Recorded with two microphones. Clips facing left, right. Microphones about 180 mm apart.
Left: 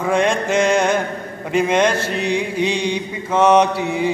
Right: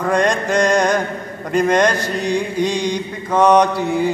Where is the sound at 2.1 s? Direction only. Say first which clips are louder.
Right 1 dB; 60° left (ahead or behind).